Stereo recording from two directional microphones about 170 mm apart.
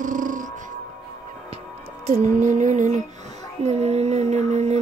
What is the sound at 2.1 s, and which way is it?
Music, 45° right (ahead or behind).